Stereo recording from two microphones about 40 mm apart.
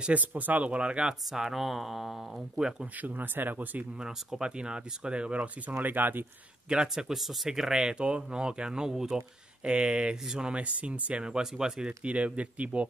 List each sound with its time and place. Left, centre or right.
0.1 s speech: right
1.0 s speech: centre
3.0 s speech: right
4.4 s speech: right
5.8 s speech: right
6.7 s speech: right
7.1 s speech: centre
9.7 s speech: right
10.2 s speech: centre
10.5 s speech: right
11.3 s speech: centre
12.0 s speech: right